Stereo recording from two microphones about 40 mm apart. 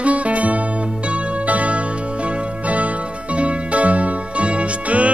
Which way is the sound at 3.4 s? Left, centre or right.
Right.